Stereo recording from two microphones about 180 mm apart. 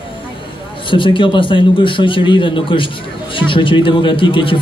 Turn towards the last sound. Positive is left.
turn(degrees=30)  # may be behind; listen again after turning